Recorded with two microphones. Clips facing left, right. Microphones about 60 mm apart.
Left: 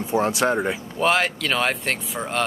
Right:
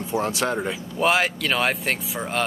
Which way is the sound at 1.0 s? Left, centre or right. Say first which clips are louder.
Even; centre.